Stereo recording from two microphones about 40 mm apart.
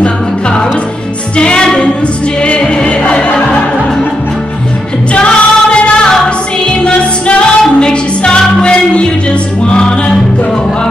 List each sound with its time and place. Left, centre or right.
0.0 s music: left
5.1 s music: left